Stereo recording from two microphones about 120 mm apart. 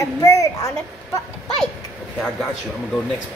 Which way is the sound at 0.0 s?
25° left (ahead or behind).